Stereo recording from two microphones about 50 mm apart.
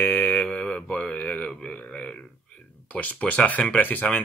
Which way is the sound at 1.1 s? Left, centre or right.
Left.